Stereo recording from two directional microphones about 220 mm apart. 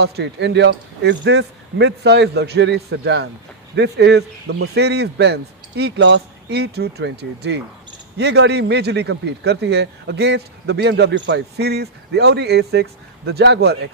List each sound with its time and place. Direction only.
0.0 s a man's voice: 50° right (ahead or behind)